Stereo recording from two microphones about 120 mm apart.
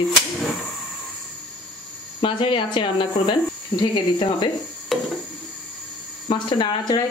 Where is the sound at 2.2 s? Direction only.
45° left (ahead or behind).